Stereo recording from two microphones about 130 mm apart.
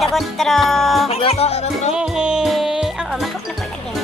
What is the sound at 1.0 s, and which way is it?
Music, 50° left (ahead or behind).